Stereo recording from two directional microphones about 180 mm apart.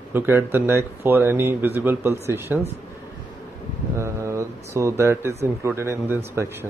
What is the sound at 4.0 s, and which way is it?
Speech, 15° right (ahead or behind).